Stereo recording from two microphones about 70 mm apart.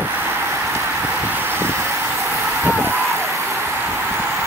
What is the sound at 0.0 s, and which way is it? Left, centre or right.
Vehicle, right.